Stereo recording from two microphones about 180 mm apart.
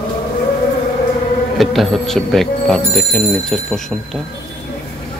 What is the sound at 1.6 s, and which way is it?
Speech, centre (ahead or behind).